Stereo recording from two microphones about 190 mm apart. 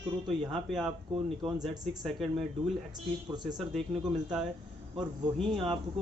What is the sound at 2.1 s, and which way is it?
Speech, centre (ahead or behind).